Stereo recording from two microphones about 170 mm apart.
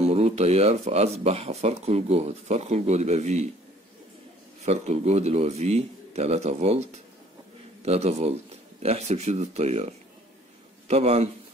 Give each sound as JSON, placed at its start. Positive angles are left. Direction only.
{"t": 0.0, "sound": "speech", "side_deg": -40}
{"t": 4.6, "sound": "speech", "side_deg": -40}